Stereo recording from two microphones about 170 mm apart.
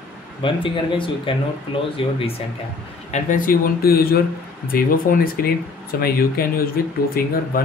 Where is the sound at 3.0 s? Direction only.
45° left (ahead or behind).